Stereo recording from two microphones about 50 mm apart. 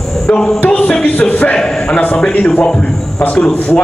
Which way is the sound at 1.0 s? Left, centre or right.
Left.